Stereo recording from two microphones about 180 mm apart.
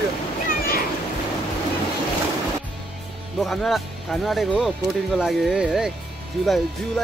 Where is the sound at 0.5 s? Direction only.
55° left (ahead or behind).